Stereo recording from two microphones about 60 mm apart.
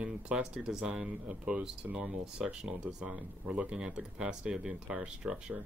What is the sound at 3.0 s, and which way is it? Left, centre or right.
Speech, right.